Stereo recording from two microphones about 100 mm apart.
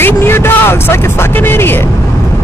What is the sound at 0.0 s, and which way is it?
Speech, 25° left (ahead or behind).